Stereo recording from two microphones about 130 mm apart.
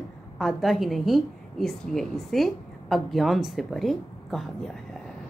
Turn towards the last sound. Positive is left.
turn(degrees=0)  # may be behind; listen again after turning